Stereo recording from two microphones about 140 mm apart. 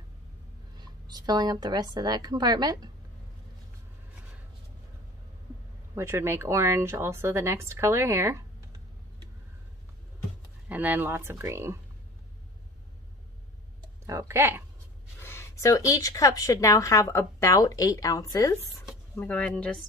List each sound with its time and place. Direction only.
0.7 s speech: 30° right (ahead or behind)
5.9 s speech: 20° right (ahead or behind)
10.7 s speech: 10° right (ahead or behind)
14.0 s speech: 20° right (ahead or behind)
15.1 s speech: 15° left (ahead or behind)
19.1 s speech: 10° left (ahead or behind)